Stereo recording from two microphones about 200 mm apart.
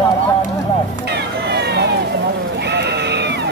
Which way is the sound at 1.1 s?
55° right (ahead or behind).